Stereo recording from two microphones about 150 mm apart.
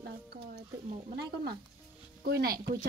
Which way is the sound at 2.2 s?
85° right.